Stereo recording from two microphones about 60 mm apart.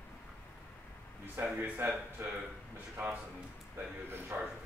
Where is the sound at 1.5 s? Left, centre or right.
Right.